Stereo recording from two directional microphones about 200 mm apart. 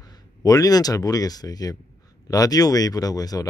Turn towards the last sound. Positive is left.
turn(degrees=20)  # may be behind; listen again after turning